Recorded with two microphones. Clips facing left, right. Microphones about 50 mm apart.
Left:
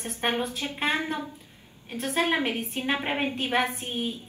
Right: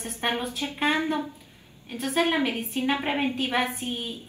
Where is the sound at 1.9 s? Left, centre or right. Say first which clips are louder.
Right 1 dB; left.